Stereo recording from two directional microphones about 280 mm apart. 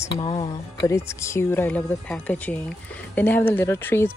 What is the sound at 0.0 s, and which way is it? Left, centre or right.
Speech, centre.